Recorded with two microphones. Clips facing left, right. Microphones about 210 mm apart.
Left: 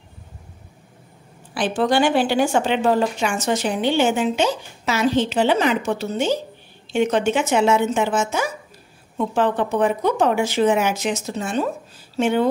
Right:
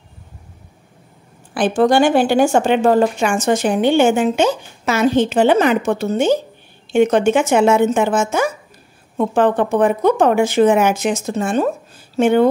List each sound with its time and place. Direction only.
1.5 s a woman's voice: 50° right (ahead or behind)